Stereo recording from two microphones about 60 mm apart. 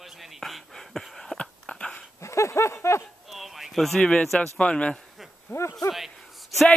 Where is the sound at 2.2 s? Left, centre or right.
Left.